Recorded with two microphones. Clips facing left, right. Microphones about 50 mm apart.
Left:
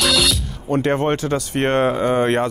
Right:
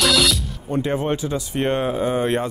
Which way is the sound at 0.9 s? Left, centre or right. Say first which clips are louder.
Left 4 dB; left.